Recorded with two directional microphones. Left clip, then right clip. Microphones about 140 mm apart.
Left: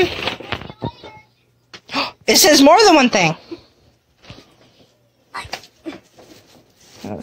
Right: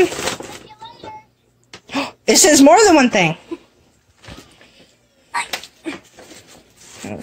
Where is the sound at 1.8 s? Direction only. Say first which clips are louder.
Even; 20° right (ahead or behind).